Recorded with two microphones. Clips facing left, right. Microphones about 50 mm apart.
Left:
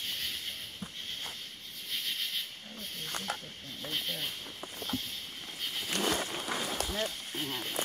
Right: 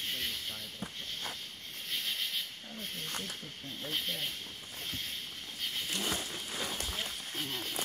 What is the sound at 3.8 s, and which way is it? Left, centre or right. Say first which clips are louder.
Speech: even; centre.